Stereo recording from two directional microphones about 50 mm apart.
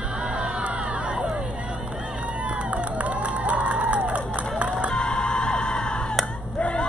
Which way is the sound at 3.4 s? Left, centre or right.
Right.